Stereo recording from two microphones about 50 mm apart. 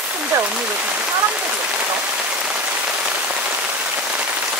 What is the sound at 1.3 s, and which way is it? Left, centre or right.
Rain on surface, right.